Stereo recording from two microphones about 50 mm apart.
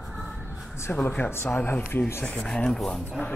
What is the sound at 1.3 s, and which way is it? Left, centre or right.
Speech, left.